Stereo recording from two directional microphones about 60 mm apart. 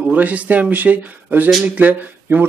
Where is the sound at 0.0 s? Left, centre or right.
Right.